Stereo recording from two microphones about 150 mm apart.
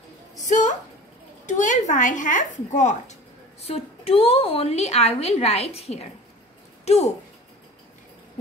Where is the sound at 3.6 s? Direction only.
40° left (ahead or behind).